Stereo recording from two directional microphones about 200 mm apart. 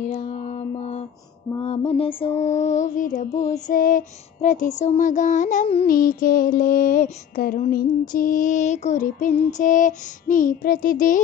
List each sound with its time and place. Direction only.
0.0 s mantra: 35° left (ahead or behind)
1.6 s music: 30° left (ahead or behind)